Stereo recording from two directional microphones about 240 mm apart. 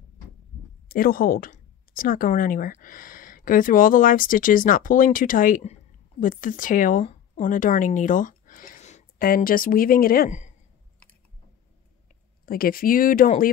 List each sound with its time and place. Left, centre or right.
0.8 s speech: left
12.1 s speech: left